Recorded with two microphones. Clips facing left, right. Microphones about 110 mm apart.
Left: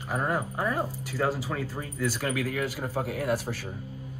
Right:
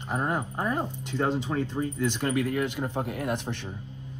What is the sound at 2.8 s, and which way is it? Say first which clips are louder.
Speech: right 3 dB; 10° right (ahead or behind).